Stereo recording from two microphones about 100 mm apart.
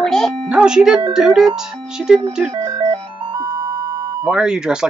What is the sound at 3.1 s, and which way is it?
Music, 55° right (ahead or behind).